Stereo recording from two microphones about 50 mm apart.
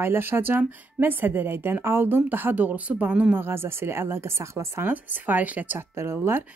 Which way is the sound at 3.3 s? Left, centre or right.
Right.